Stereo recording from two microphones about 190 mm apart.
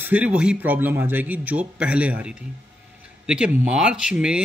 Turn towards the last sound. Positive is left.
turn(degrees=-5)  # may be behind; listen again after turning